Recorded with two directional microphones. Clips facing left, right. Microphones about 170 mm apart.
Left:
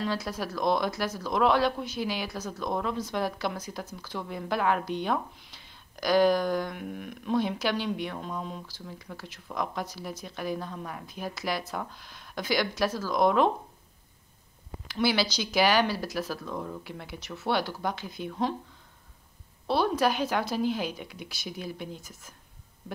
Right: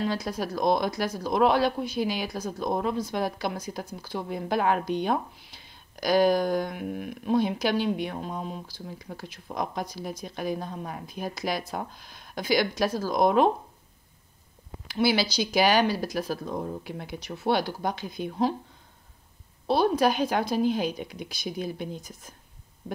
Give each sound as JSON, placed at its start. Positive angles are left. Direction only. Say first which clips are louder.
{"t": 0.1, "sound": "a woman's voice", "louder": "right 2 dB", "side_deg": -15}
{"t": 11.1, "sound": "speech", "louder": "right 2 dB", "side_deg": -15}
{"t": 15.0, "sound": "speech", "louder": "right 3 dB", "side_deg": -10}
{"t": 16.4, "sound": "speech", "louder": "right 3 dB", "side_deg": -30}
{"t": 17.5, "sound": "speech", "louder": "right 3 dB", "side_deg": -15}
{"t": 19.7, "sound": "speech", "louder": "right 3 dB", "side_deg": -15}